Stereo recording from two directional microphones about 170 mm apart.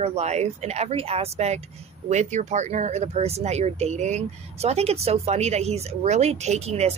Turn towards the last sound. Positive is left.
turn(degrees=-40)  # may be behind; listen again after turning